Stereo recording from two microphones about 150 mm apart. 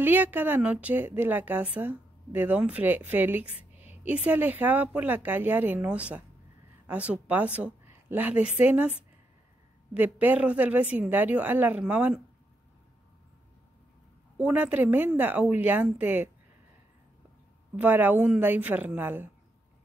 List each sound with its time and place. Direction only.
0.0 s speech: 10° right (ahead or behind)
3.7 s a sound: 10° right (ahead or behind)
4.3 s a woman's voice: 10° right (ahead or behind)
9.9 s speech: 10° right (ahead or behind)
14.4 s speech: 10° right (ahead or behind)
17.7 s speech: 10° right (ahead or behind)